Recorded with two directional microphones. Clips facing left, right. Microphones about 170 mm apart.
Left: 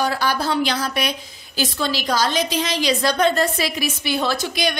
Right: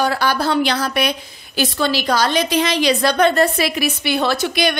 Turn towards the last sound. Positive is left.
turn(degrees=-65)  # may be behind; listen again after turning